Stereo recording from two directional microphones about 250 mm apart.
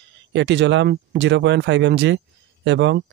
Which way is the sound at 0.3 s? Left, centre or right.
Right.